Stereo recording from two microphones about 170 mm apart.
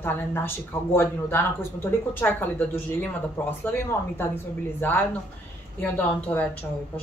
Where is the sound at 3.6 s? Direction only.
15° left (ahead or behind).